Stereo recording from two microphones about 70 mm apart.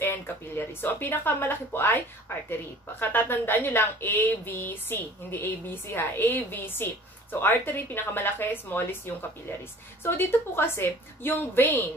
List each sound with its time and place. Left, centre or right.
0.0 s speech: left